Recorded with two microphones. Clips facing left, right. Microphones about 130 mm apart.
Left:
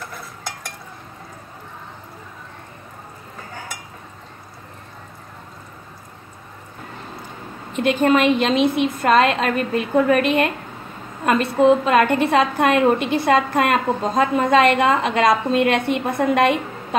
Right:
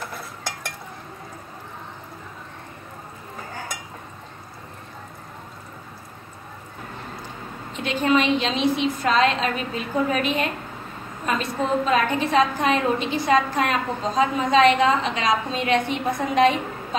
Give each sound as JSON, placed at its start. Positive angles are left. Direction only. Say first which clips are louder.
{"t": 7.7, "sound": "a woman's voice", "louder": "left 4 dB", "side_deg": 55}